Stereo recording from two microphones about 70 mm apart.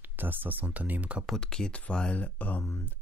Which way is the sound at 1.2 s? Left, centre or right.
Centre.